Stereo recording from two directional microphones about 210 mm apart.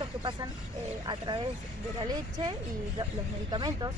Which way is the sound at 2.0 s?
20° right (ahead or behind).